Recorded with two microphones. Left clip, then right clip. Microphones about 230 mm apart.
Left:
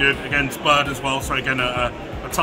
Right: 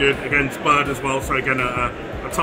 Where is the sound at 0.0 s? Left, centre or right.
Centre.